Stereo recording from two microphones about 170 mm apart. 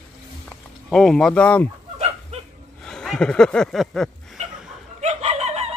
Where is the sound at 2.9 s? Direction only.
5° left (ahead or behind).